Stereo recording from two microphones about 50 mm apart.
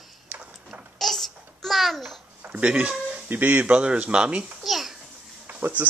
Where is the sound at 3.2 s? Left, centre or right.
Right.